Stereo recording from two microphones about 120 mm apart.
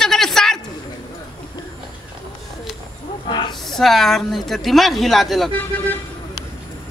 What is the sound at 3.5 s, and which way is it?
A woman's voice, centre (ahead or behind).